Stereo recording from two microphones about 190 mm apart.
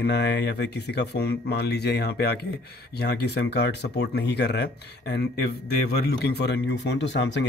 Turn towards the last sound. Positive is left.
turn(degrees=65)  # may be behind; listen again after turning